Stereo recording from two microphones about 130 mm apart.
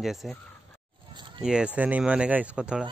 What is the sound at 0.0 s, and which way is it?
Speech, centre (ahead or behind).